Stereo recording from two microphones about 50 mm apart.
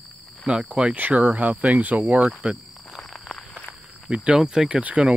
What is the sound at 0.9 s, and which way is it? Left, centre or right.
Speech, right.